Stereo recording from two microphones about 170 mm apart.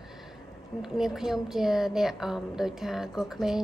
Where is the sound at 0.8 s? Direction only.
Centre (ahead or behind).